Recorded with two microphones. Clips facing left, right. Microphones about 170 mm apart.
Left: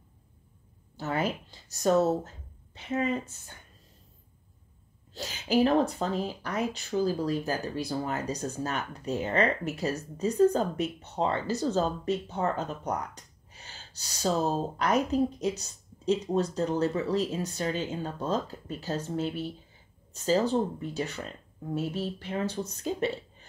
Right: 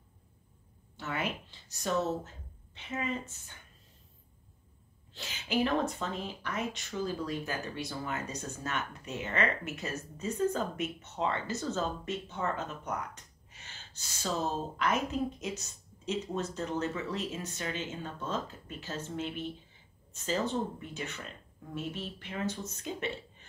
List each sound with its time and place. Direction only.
0.9 s speech: 35° left (ahead or behind)
5.1 s speech: 40° left (ahead or behind)